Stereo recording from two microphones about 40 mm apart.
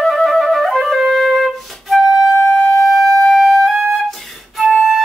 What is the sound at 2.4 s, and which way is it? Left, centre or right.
Flute, left.